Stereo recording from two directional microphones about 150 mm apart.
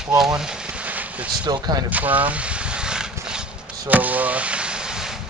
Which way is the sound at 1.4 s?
30° right (ahead or behind).